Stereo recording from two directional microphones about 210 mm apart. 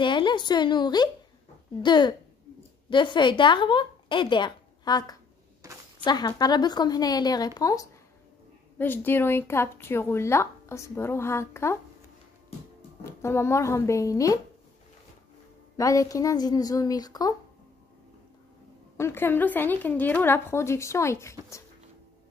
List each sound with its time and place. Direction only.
0.0 s a woman's voice: 20° left (ahead or behind)
5.6 s a sound: 15° right (ahead or behind)
6.0 s speech: 20° left (ahead or behind)
13.0 s speech: 10° left (ahead or behind)
15.7 s speech: 15° left (ahead or behind)
18.9 s speech: 10° left (ahead or behind)